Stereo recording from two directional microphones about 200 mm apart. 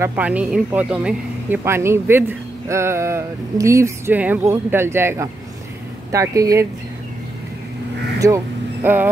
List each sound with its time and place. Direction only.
0.0 s speech: 10° right (ahead or behind)
8.2 s speech: 15° right (ahead or behind)